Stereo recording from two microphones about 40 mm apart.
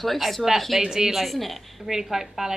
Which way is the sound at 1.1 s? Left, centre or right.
Centre.